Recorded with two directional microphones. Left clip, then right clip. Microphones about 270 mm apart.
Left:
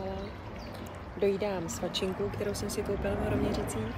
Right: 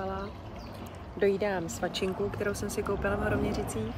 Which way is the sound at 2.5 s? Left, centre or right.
Centre.